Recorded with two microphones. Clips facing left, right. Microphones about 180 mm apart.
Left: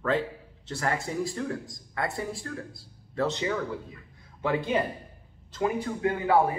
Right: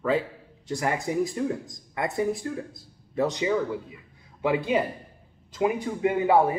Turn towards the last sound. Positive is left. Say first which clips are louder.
# right 3 dB
turn(degrees=-20)  # may be behind; listen again after turning